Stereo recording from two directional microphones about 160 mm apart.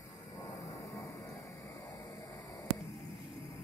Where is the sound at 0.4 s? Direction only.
20° left (ahead or behind).